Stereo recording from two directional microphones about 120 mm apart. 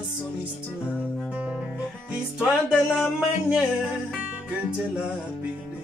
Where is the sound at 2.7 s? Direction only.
5° right (ahead or behind).